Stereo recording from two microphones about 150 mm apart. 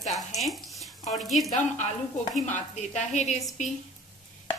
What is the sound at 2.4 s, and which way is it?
Speech, 50° left (ahead or behind).